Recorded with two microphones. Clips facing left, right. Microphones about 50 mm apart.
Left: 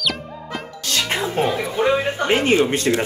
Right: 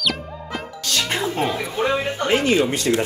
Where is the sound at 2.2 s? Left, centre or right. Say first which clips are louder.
Left 1 dB; left.